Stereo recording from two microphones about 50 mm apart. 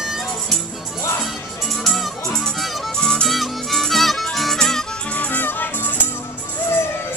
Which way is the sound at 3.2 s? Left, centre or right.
Centre.